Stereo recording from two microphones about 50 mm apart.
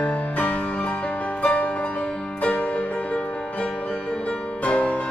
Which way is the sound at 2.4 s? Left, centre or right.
Left.